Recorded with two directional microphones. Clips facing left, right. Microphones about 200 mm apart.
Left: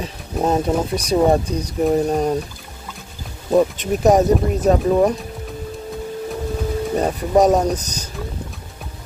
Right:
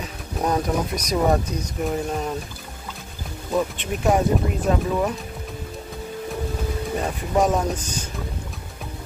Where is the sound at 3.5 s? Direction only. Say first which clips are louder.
Left 8 dB; 40° left (ahead or behind).